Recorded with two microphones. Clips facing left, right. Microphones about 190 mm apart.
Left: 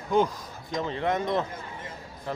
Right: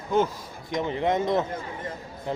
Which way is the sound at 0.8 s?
20° right (ahead or behind).